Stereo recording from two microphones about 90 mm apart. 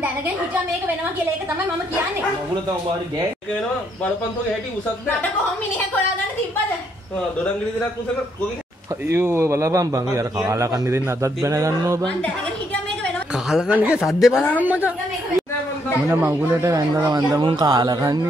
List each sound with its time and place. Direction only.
9.1 s a man's voice: 25° right (ahead or behind)
13.5 s speech: 5° right (ahead or behind)
13.7 s speech: 15° right (ahead or behind)
14.0 s speech: 5° right (ahead or behind)
14.6 s speech: 20° right (ahead or behind)
16.1 s speech: 25° right (ahead or behind)
16.6 s a man's voice: 40° right (ahead or behind)
17.4 s speech: 60° right (ahead or behind)